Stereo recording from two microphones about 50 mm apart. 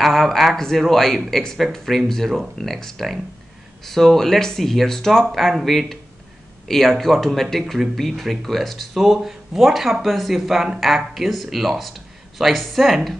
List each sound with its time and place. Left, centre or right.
0.1 s speech: centre